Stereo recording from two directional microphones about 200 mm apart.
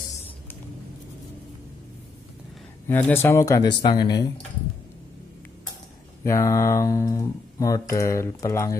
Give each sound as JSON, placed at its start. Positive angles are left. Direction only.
{"t": 2.9, "sound": "speech", "side_deg": 10}
{"t": 6.2, "sound": "speech", "side_deg": 15}